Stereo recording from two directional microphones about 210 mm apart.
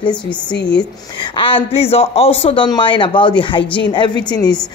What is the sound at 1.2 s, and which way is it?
Speech, 25° left (ahead or behind).